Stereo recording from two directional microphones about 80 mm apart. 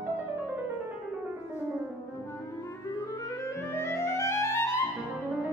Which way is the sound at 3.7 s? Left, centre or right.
Left.